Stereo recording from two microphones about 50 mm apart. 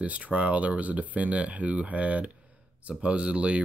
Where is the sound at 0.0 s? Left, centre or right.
Right.